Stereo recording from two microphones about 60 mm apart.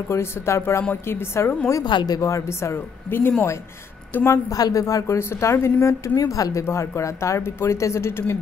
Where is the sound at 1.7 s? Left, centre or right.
Left.